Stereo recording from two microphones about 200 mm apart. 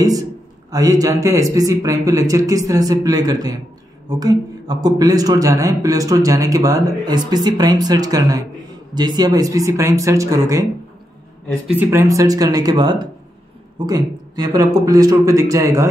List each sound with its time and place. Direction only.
0.0 s speech: 15° right (ahead or behind)
11.6 s speech: 10° right (ahead or behind)